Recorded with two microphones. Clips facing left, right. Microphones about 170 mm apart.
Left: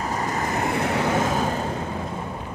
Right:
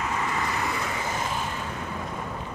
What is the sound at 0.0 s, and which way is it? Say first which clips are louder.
Vehicle: left 3 dB; 40° left (ahead or behind).